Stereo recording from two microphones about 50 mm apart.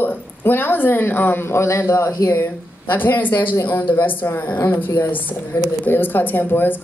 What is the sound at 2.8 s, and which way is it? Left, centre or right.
Speech, left.